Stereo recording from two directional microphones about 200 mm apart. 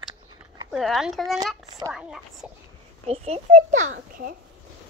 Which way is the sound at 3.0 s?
30° right (ahead or behind).